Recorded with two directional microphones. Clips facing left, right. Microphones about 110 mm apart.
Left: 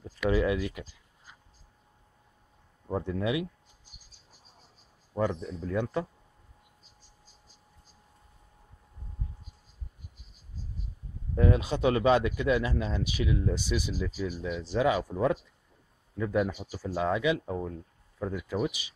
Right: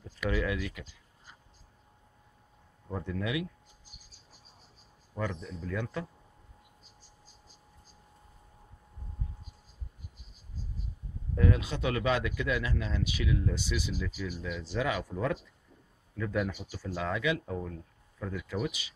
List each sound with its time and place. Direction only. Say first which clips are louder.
0.3 s speech: left 5 dB; 25° left (ahead or behind)
2.9 s speech: left 4 dB; 25° left (ahead or behind)
5.1 s speech: left 6 dB; 25° left (ahead or behind)
11.3 s speech: left 3 dB; 25° left (ahead or behind)
13.9 s speech: left 4 dB; 30° left (ahead or behind)
14.6 s speech: left 6 dB; 20° left (ahead or behind)